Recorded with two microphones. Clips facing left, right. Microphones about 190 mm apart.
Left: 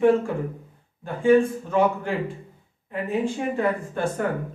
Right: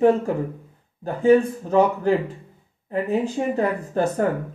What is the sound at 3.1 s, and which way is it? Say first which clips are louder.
Speech: right 1 dB; 40° right (ahead or behind).